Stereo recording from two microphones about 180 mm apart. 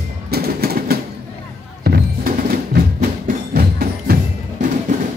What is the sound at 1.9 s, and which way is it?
Music, 60° right (ahead or behind).